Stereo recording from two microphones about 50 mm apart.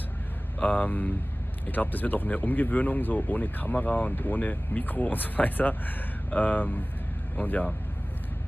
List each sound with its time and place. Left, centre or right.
0.6 s speech: left